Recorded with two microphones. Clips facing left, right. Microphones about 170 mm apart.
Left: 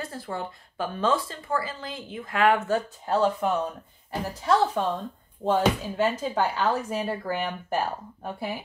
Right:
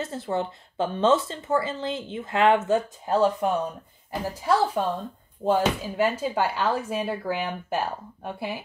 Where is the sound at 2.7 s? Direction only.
10° right (ahead or behind).